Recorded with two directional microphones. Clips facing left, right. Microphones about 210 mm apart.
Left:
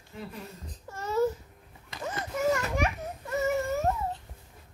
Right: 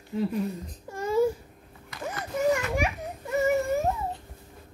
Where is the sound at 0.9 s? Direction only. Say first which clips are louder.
Right 3 dB; 10° right (ahead or behind).